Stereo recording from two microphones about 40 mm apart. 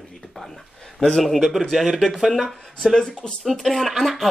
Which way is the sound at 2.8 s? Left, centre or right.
Centre.